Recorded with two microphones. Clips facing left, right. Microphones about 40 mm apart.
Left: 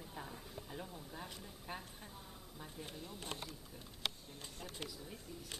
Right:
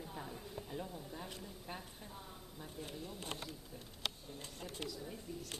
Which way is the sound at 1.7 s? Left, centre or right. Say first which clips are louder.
Left 1 dB; centre.